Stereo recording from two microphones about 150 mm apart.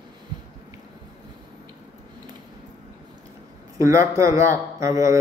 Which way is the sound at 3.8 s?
20° right (ahead or behind).